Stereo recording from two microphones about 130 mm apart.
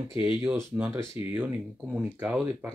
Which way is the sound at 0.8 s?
15° right (ahead or behind).